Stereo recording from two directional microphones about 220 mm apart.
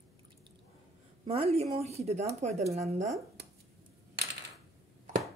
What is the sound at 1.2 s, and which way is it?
Speech, 25° right (ahead or behind).